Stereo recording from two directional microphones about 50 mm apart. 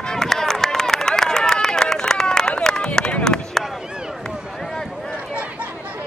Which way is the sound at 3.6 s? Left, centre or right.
Centre.